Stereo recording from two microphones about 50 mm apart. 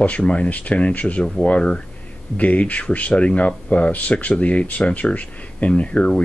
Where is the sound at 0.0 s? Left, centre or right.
Left.